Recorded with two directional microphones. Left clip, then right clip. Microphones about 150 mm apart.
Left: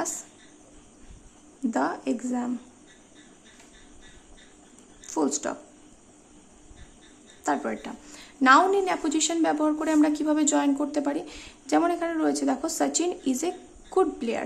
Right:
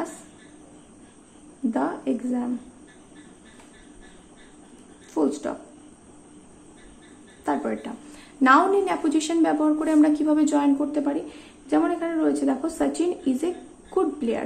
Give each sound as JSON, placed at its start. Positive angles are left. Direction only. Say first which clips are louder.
{"t": 1.7, "sound": "a woman's voice", "louder": "right 1 dB", "side_deg": 25}
{"t": 5.0, "sound": "speech", "louder": "right 2 dB", "side_deg": 25}
{"t": 7.4, "sound": "a woman's voice", "louder": "right 1 dB", "side_deg": 20}